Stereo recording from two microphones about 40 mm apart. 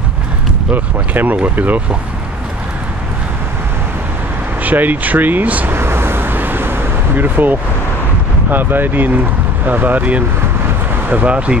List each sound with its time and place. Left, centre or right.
0.7 s speech: right
1.3 s speech: right
4.6 s speech: right
5.7 s vehicle: right
7.2 s speech: right
11.2 s speech: right